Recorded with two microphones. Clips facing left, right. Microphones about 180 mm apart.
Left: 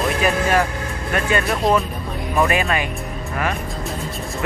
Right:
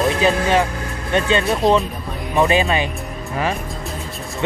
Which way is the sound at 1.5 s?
Centre (ahead or behind).